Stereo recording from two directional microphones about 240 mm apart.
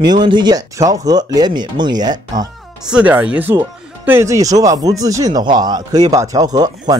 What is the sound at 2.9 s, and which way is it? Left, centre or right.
Speech, centre.